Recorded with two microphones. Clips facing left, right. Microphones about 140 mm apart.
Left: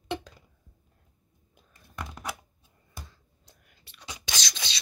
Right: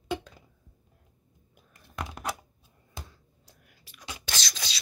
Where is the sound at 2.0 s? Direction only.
70° right (ahead or behind).